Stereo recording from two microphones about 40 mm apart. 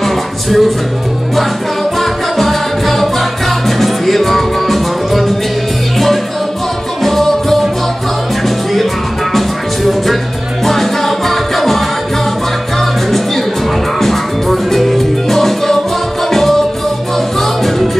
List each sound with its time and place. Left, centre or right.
0.0 s music: centre
2.0 s music: centre
7.0 s music: centre
10.6 s music: centre
13.9 s music: centre